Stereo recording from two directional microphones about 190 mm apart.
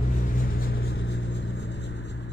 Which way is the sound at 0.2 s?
45° left (ahead or behind).